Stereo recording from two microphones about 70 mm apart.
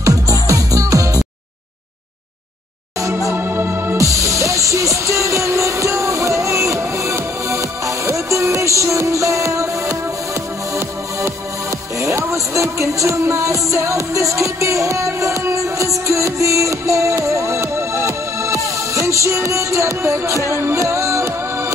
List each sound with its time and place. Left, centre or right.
0.0 s music: right
3.0 s music: right
3.3 s music: right
4.0 s music: right
12.0 s music: right